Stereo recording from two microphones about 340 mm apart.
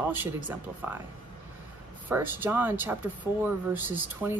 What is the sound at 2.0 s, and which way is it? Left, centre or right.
A woman's voice, centre.